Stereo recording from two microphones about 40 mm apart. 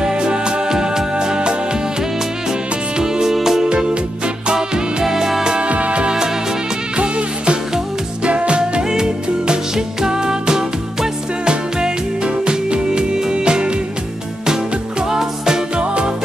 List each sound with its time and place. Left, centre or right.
0.0 s music: right
3.0 s music: centre
3.6 s music: right
5.7 s music: right; by 15.8 s centre
15.8 s music: right